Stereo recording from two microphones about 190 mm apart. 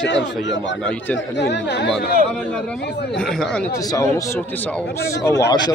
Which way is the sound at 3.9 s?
15° left (ahead or behind).